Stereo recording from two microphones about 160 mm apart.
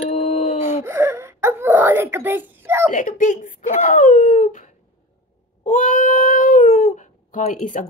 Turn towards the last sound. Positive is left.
turn(degrees=55)  # may be behind; listen again after turning